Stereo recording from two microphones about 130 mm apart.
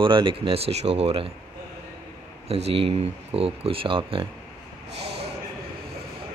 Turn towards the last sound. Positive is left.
turn(degrees=-50)  # may be behind; listen again after turning